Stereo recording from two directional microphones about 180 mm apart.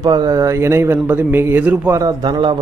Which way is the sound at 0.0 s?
25° right (ahead or behind).